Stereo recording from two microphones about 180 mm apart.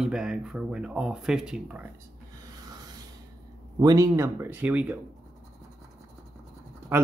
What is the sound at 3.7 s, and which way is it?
Speech, 20° right (ahead or behind).